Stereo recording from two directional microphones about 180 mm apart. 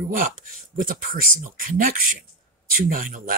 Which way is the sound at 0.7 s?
50° right (ahead or behind).